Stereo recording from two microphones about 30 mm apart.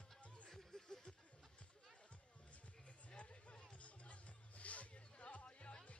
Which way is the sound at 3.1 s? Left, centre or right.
Left.